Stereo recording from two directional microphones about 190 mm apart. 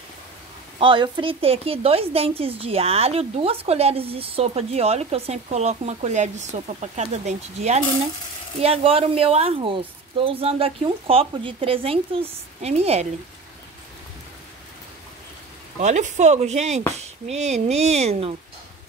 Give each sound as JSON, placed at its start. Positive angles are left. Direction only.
{"t": 0.7, "sound": "a woman's voice", "side_deg": -25}
{"t": 15.8, "sound": "a woman's voice", "side_deg": -40}